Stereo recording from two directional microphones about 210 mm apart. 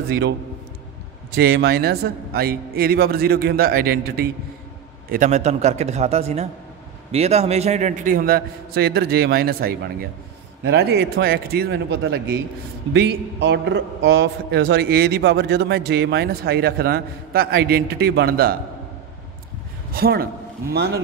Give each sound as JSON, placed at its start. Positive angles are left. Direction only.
{"t": 1.4, "sound": "a man's voice", "side_deg": -50}
{"t": 5.1, "sound": "a man's voice", "side_deg": -35}
{"t": 19.9, "sound": "a man's voice", "side_deg": -45}